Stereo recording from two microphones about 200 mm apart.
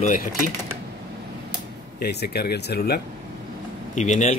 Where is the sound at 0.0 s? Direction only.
45° left (ahead or behind).